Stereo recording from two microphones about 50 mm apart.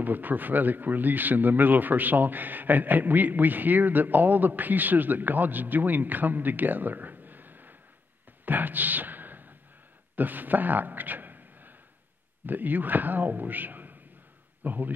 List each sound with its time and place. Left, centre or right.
0.0 s a man's voice: right
8.5 s a sound: right
10.1 s a man's voice: right